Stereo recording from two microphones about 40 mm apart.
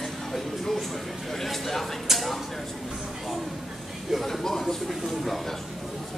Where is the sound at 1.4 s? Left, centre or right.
Centre.